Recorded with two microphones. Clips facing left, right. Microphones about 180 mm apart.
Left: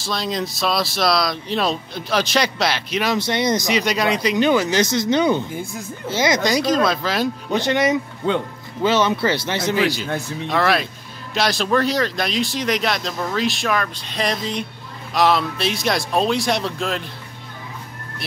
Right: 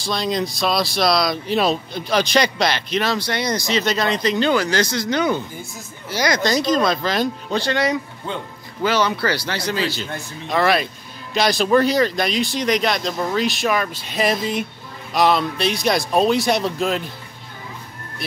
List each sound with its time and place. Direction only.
0.0 s speech: centre (ahead or behind)
3.2 s speech: 20° left (ahead or behind)
6.4 s speech: 10° left (ahead or behind)
7.5 s speech: 20° left (ahead or behind)
10.5 s speech: centre (ahead or behind)